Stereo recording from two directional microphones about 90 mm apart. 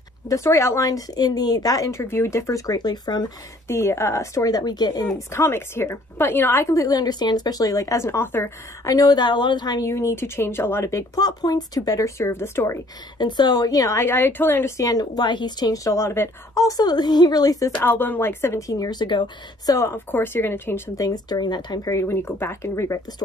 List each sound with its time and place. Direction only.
0.3 s speech: 35° left (ahead or behind); by 3.3 s 50° left (ahead or behind)
3.6 s speech: 30° left (ahead or behind); by 5.0 s 50° left (ahead or behind)
5.0 s speech: 30° left (ahead or behind)
8.8 s speech: 45° left (ahead or behind); by 12.7 s 30° left (ahead or behind)
13.2 s a woman's voice: 55° left (ahead or behind)
13.9 s speech: 25° left (ahead or behind)
14.8 s a woman's voice: 45° left (ahead or behind)
17.8 s speech: 20° left (ahead or behind); by 19.7 s 55° left (ahead or behind)
19.7 s speech: 35° left (ahead or behind)
20.1 s speech: 25° left (ahead or behind)
20.9 s a woman's voice: 45° left (ahead or behind)
21.9 s speech: 30° left (ahead or behind)